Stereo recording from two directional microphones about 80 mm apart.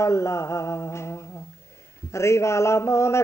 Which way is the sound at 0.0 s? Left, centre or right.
Left.